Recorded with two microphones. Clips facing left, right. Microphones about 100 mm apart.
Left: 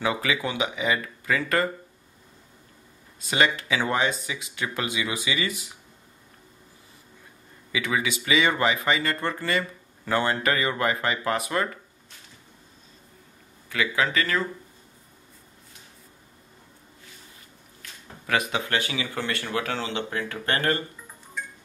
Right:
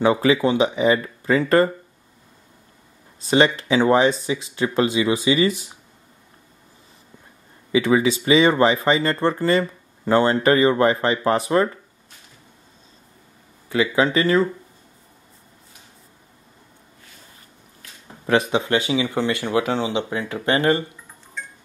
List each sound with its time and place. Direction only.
0.0 s speech: 30° right (ahead or behind)
3.2 s speech: 30° right (ahead or behind)
7.7 s speech: 30° right (ahead or behind)
13.7 s speech: 30° right (ahead or behind)
18.2 s speech: 25° right (ahead or behind)